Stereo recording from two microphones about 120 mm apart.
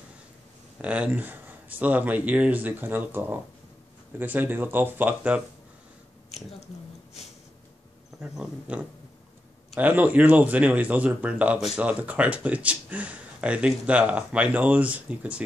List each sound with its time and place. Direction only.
0.7 s speech: 10° right (ahead or behind)
8.2 s speech: 10° right (ahead or behind)